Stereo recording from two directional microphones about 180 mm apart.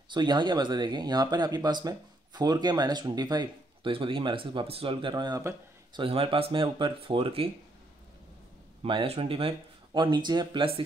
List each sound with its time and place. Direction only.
0.1 s speech: 25° right (ahead or behind)
5.9 s speech: 30° right (ahead or behind)
8.8 s speech: 30° right (ahead or behind)